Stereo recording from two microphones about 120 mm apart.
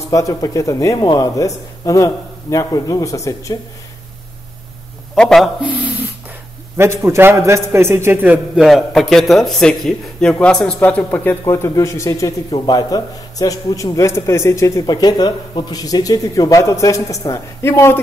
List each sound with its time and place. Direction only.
0.1 s a man's voice: 30° left (ahead or behind)
5.1 s a man's voice: 5° left (ahead or behind)
5.6 s a sound: 10° right (ahead or behind)
6.8 s a man's voice: 25° right (ahead or behind)
8.5 s a man's voice: centre (ahead or behind); by 18.0 s 20° left (ahead or behind)